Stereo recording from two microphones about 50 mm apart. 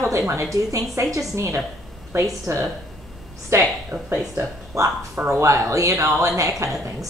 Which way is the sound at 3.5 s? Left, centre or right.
Right.